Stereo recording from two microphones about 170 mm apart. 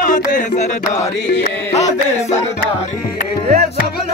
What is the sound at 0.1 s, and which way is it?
Music, 50° left (ahead or behind).